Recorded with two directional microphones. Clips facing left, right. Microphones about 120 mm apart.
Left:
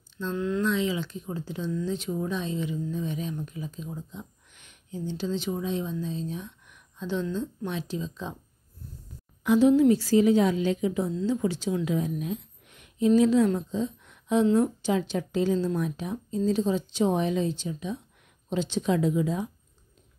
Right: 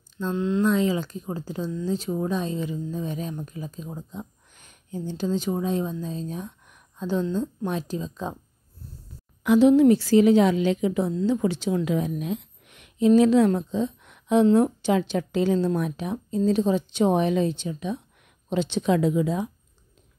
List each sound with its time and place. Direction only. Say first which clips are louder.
0.3 s speech: right 3 dB; 20° right (ahead or behind)
0.6 s speech: right 6 dB; 40° right (ahead or behind)
9.4 s a woman's voice: right 3 dB; 85° right